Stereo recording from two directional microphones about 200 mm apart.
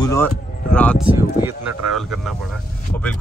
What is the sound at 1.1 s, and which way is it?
Speech, 10° right (ahead or behind).